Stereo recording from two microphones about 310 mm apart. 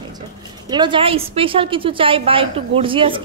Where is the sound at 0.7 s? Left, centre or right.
Centre.